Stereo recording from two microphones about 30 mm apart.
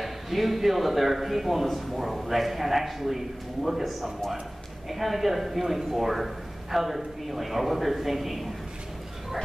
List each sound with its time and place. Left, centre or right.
0.0 s a man's voice: centre